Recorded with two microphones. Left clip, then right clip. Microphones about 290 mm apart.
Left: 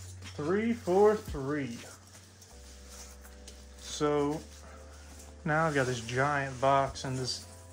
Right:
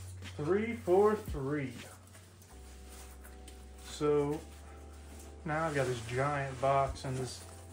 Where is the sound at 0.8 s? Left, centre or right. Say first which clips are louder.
Left 3 dB; left.